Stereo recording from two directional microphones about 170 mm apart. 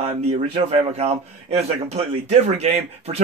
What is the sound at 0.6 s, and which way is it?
Speech, 35° right (ahead or behind).